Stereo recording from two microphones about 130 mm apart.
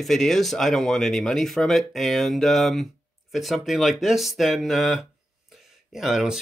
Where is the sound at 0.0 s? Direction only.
Centre (ahead or behind).